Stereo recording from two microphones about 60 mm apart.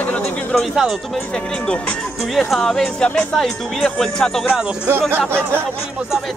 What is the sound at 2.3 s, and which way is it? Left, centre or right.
Speech, centre.